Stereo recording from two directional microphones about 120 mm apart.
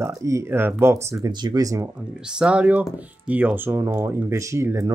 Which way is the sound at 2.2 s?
10° right (ahead or behind).